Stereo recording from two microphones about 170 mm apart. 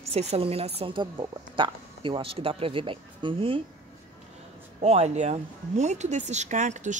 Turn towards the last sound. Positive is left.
turn(degrees=-45)  # may be behind; listen again after turning